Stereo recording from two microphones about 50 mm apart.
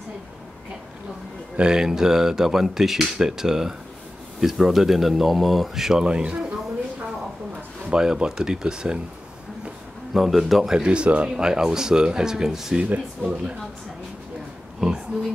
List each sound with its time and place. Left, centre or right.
1.6 s speech: centre
7.9 s speech: centre
10.1 s speech: centre
10.8 s speech: right
12.8 s speech: right